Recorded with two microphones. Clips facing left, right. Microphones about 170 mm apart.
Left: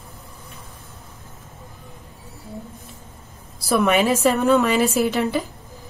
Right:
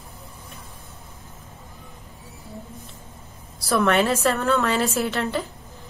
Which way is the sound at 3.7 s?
15° left (ahead or behind).